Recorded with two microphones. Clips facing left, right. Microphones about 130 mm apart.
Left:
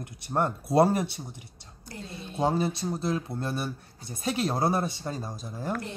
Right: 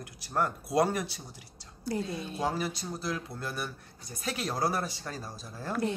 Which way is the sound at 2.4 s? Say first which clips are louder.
Left 7 dB; 25° left (ahead or behind).